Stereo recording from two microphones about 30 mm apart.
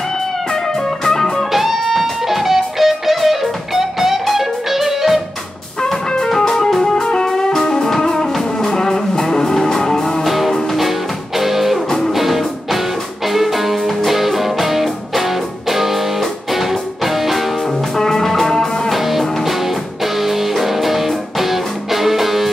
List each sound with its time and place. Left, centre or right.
0.8 s music: centre
1.5 s music: centre
6.1 s music: centre
10.2 s music: centre
17.9 s music: centre
18.9 s music: centre